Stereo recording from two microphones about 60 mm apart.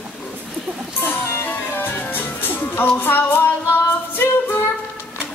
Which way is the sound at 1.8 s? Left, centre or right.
Left.